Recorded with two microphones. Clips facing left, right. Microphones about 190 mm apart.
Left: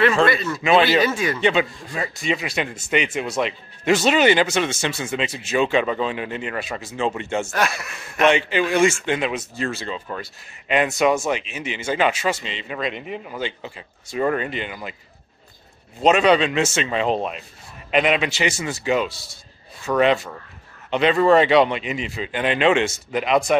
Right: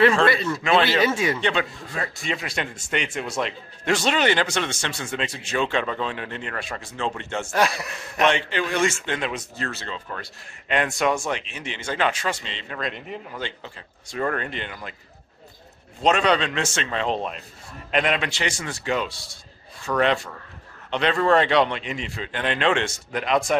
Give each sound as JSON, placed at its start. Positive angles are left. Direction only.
{"t": 0.2, "sound": "speech", "side_deg": -30}
{"t": 1.4, "sound": "a man's voice", "side_deg": 5}
{"t": 7.5, "sound": "speech", "side_deg": -35}
{"t": 8.3, "sound": "a man's voice", "side_deg": 10}
{"t": 16.0, "sound": "a man's voice", "side_deg": 5}